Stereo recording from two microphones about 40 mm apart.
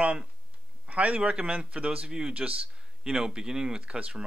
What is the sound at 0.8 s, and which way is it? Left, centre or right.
Speech, right.